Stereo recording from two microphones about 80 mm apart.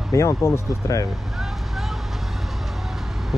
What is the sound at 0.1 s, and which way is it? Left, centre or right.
Speech, left.